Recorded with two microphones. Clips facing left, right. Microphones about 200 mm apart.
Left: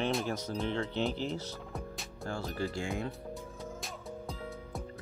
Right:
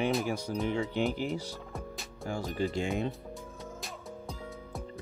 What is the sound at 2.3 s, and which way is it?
Speech, 15° right (ahead or behind).